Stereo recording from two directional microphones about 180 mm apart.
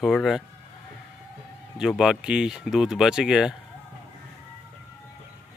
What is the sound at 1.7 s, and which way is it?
Speech, 5° right (ahead or behind).